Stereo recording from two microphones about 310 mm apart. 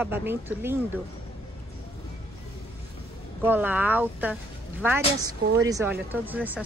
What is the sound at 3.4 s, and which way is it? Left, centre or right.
Speech, centre.